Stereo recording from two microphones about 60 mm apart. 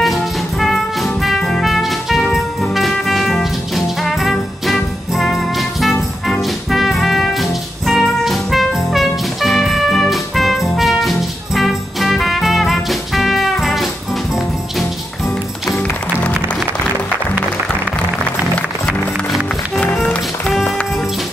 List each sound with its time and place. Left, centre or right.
0.0 s music: centre
20.0 s music: left